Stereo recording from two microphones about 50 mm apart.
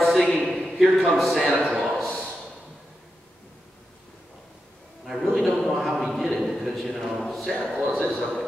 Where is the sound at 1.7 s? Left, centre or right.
Centre.